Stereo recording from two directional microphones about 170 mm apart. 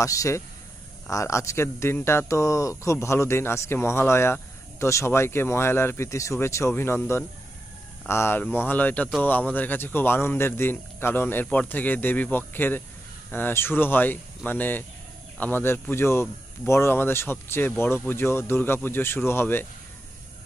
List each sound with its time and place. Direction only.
0.0 s a man's voice: 20° left (ahead or behind)